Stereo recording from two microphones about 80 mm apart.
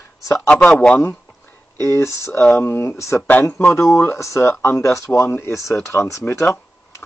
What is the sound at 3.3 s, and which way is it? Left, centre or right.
Speech, left.